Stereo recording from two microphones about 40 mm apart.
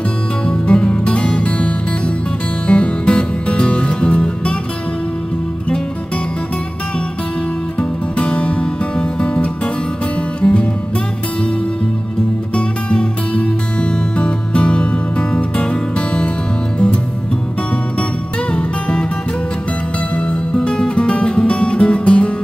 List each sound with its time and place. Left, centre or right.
0.5 s music: left
8.2 s music: left
12.5 s music: left
18.5 s music: left
20.5 s music: centre